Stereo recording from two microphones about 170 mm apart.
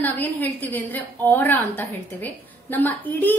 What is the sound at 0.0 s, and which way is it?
A woman's voice, 10° left (ahead or behind).